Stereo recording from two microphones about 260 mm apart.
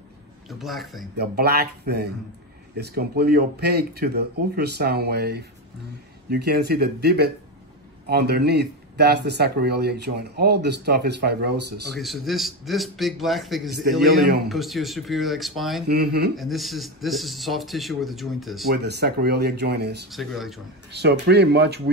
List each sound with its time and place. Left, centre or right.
0.5 s a man's voice: centre
1.1 s speech: right
11.9 s a man's voice: centre
15.9 s speech: right
16.3 s a man's voice: centre
18.7 s speech: right
20.1 s a man's voice: centre
20.9 s speech: right